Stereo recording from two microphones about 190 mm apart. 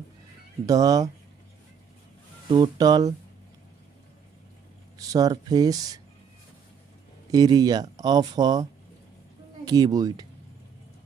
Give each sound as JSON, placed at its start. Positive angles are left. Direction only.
{"t": 0.7, "sound": "speech", "side_deg": -20}
{"t": 2.5, "sound": "speech", "side_deg": -20}
{"t": 4.9, "sound": "speech", "side_deg": -20}
{"t": 7.2, "sound": "speech", "side_deg": -20}
{"t": 9.7, "sound": "speech", "side_deg": -20}